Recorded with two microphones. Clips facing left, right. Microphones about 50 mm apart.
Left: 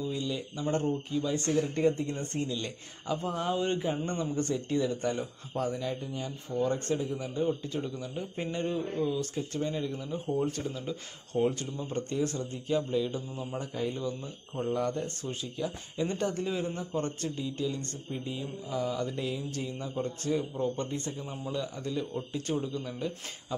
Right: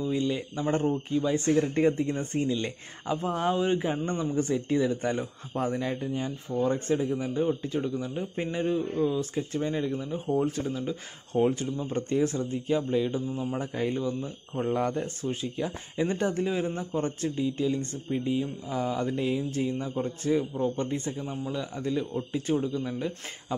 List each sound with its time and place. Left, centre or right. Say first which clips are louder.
0.0 s a man's voice: right 5 dB; right
1.6 s speech: even; right
2.0 s a man's voice: right 5 dB; right
3.5 s a man's voice: right 3 dB; centre
4.2 s a man's voice: right 3 dB; centre
5.6 s a man's voice: right 3 dB; right
9.9 s a man's voice: right 4 dB; centre
13.7 s speech: right 4 dB; right
14.0 s a man's voice: right 4 dB; centre
14.6 s a man's voice: right 3 dB; right; by 23.1 s centre